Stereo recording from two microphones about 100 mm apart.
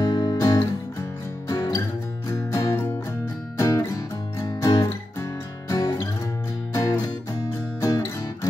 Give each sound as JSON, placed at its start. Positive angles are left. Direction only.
{"t": 0.0, "sound": "guitar", "side_deg": 45}
{"t": 1.5, "sound": "music", "side_deg": 35}